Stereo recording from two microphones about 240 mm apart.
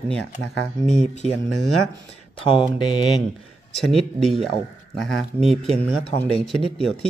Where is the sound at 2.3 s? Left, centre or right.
Left.